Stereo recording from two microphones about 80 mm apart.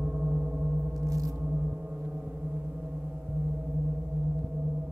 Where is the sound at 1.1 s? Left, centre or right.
Right.